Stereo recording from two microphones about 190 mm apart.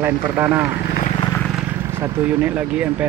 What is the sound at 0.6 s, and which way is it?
Speech, 60° left (ahead or behind).